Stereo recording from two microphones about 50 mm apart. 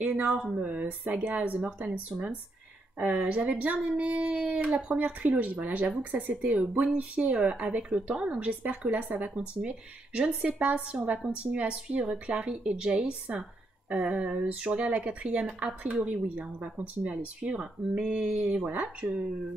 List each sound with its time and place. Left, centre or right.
0.0 s speech: right
9.3 s speech: right